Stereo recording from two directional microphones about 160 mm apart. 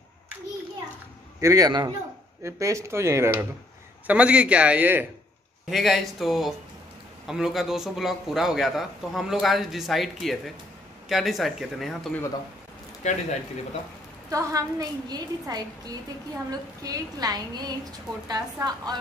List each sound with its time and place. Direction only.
1.4 s a woman's voice: 20° right (ahead or behind); by 12.1 s centre (ahead or behind)
13.0 s speech: 45° left (ahead or behind)
14.3 s a woman's voice: 20° right (ahead or behind)